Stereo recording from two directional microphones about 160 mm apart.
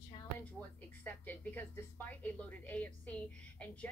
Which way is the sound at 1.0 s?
10° left (ahead or behind).